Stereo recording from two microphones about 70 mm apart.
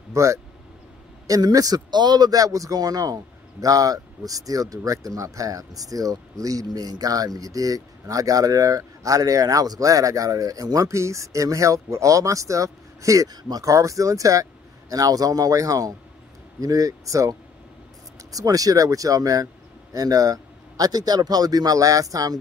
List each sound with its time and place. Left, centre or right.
0.1 s speech: right
1.2 s speech: right
10.9 s speech: right